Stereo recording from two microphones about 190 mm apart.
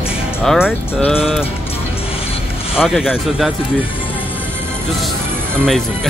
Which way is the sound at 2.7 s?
Centre (ahead or behind).